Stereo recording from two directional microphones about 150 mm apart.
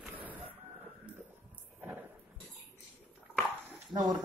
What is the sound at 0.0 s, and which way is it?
Chicken, 10° right (ahead or behind).